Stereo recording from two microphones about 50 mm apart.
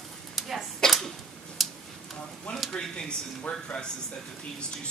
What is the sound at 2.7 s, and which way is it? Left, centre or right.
Speech, centre.